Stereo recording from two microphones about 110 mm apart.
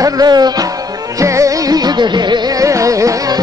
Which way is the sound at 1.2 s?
30° right (ahead or behind).